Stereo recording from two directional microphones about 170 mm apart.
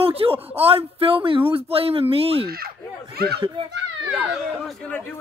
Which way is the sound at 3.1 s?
65° right (ahead or behind).